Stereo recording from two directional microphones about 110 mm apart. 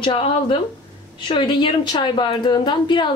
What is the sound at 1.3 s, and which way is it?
Speech, 45° left (ahead or behind).